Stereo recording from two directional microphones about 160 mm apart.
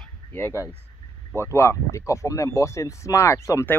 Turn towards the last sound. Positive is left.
turn(degrees=15)  # may be behind; listen again after turning